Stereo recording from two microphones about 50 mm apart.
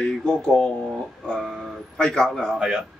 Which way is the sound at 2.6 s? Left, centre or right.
Centre.